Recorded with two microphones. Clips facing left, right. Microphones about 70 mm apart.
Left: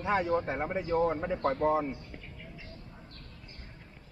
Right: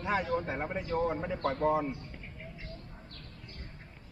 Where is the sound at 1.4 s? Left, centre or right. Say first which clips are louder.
Left 1 dB; left.